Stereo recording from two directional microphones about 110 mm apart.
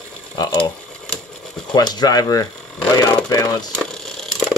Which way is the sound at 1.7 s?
40° left (ahead or behind).